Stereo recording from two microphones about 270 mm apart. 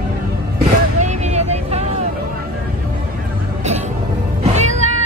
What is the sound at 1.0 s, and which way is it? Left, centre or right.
Vehicle, right.